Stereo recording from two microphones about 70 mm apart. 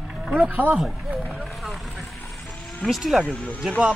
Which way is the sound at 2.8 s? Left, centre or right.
Centre.